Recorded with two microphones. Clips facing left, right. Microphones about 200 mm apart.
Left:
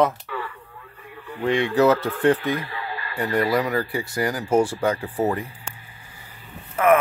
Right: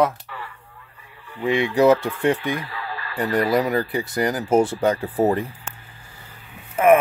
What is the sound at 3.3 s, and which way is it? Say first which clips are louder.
Speech: right 2 dB; 20° right (ahead or behind).